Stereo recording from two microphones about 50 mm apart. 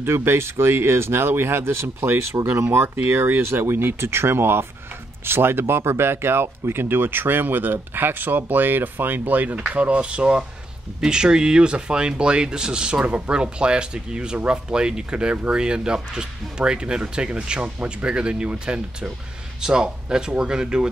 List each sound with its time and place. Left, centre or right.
0.0 s speech: right
3.0 s speech: right; by 20.9 s centre